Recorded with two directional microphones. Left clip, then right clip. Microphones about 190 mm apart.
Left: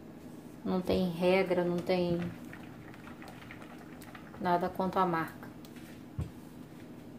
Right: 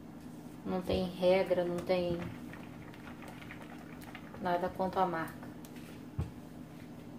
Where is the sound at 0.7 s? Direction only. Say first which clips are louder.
Left 3 dB; 35° left (ahead or behind).